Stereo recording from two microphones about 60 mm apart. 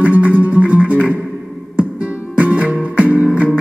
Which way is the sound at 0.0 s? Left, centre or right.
Right.